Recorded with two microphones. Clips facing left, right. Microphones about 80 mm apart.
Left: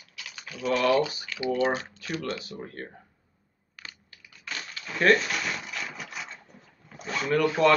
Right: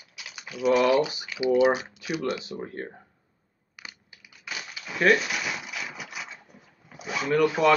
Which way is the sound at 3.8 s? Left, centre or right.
Centre.